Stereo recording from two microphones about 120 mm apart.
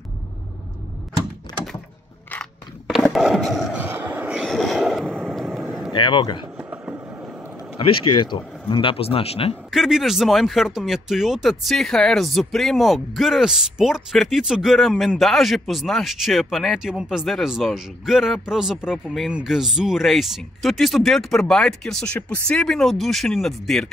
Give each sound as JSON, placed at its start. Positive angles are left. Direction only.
{"t": 2.9, "sound": "skateboard", "side_deg": 0}
{"t": 3.7, "sound": "vehicle", "side_deg": -15}
{"t": 4.5, "sound": "vehicle", "side_deg": 0}
{"t": 5.9, "sound": "speech", "side_deg": 40}
{"t": 6.5, "sound": "a sound", "side_deg": -15}
{"t": 7.7, "sound": "speech", "side_deg": 45}
{"t": 9.7, "sound": "speech", "side_deg": 0}